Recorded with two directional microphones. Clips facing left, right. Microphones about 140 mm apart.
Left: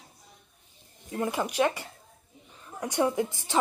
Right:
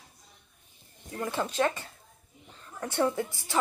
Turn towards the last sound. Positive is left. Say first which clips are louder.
# left 2 dB
turn(degrees=20)  # may be behind; listen again after turning